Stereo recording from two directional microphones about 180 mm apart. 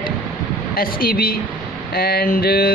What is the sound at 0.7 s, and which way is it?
Speech, 55° left (ahead or behind).